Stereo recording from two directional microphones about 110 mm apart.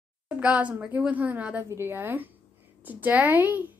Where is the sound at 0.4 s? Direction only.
10° right (ahead or behind).